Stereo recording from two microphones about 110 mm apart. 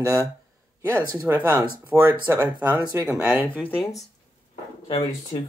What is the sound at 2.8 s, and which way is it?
Speech, 35° right (ahead or behind).